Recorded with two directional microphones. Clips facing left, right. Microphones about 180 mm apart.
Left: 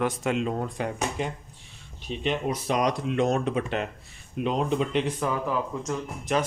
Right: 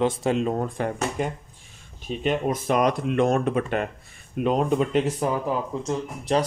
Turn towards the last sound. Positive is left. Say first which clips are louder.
# right 3 dB
turn(degrees=-30)  # may be behind; listen again after turning